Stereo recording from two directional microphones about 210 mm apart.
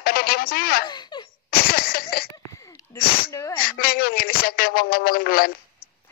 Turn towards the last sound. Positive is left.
turn(degrees=45)  # may be behind; listen again after turning